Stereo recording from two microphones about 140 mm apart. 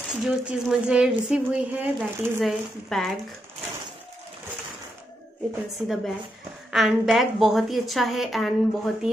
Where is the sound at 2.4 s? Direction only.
Centre (ahead or behind).